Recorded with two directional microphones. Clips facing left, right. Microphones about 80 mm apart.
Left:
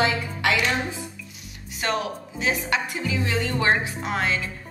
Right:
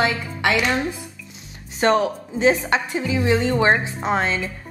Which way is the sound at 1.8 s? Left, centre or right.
Right.